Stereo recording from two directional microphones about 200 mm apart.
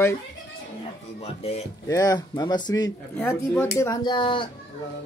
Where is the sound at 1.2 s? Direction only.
30° left (ahead or behind).